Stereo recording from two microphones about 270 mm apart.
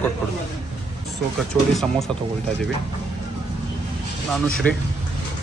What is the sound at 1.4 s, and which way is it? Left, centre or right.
Speech, centre.